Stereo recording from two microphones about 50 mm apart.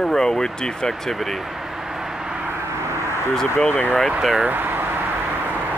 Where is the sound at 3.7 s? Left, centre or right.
Left.